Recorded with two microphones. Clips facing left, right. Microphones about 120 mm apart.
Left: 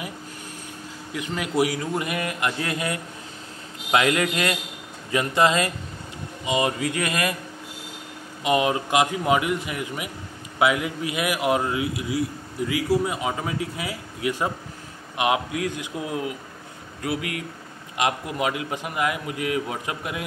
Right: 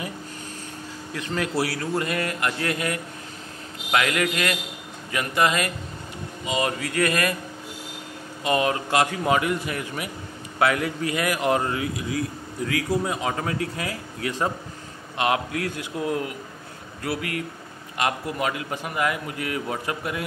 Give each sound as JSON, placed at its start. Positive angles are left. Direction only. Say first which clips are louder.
{"t": 1.1, "sound": "a man's voice", "louder": "left 1 dB", "side_deg": 10}
{"t": 8.5, "sound": "a man's voice", "louder": "left 1 dB", "side_deg": 15}